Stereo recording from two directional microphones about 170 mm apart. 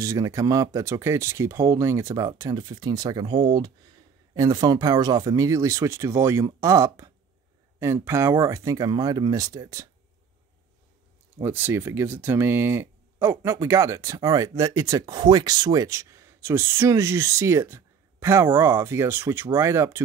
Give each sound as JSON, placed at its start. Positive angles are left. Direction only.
{"t": 0.0, "sound": "speech", "side_deg": -20}
{"t": 11.4, "sound": "speech", "side_deg": -15}